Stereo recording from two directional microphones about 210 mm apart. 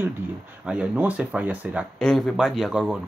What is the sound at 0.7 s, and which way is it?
Speech, 5° right (ahead or behind).